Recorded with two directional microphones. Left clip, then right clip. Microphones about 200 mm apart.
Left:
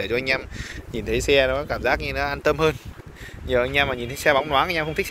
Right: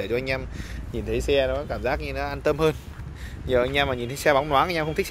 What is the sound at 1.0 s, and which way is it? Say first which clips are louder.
Speech: left 4 dB; 5° left (ahead or behind).